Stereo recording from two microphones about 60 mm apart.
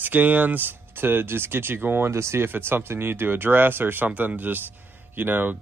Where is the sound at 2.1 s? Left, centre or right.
Right.